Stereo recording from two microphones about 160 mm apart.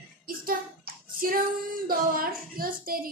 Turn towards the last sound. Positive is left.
turn(degrees=-65)  # may be behind; listen again after turning